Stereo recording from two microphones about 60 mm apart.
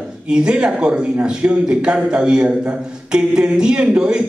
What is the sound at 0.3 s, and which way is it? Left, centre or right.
A man's voice, centre.